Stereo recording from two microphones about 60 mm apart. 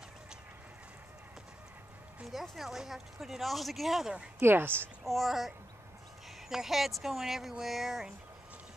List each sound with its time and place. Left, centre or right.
2.5 s speech: centre
4.4 s speech: right
5.0 s speech: centre
6.5 s speech: centre